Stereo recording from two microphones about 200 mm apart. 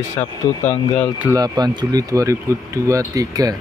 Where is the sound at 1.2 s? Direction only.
15° right (ahead or behind).